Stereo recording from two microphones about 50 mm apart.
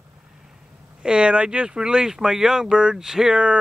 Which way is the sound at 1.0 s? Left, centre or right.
Right.